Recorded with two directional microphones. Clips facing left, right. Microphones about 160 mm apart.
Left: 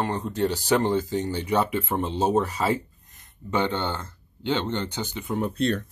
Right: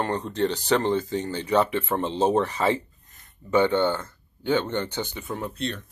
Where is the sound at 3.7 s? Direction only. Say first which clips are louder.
Right 6 dB; 15° left (ahead or behind).